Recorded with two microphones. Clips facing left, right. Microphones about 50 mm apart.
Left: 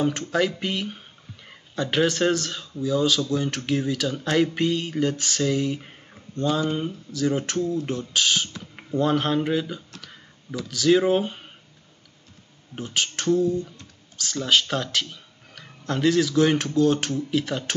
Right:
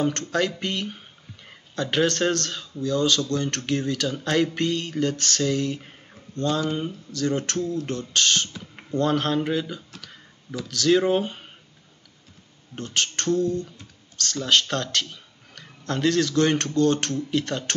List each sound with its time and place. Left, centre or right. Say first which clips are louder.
0.0 s speech: left 1 dB; centre
12.7 s speech: even; centre